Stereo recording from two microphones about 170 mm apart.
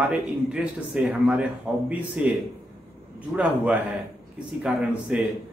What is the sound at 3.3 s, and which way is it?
A man's voice, 10° right (ahead or behind).